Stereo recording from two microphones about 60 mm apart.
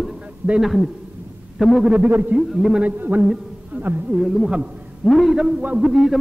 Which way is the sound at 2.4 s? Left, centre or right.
Centre.